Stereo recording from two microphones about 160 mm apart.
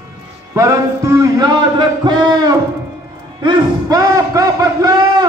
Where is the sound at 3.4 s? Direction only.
20° right (ahead or behind).